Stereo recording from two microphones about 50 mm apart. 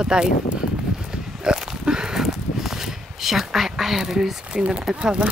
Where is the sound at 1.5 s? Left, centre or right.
Centre.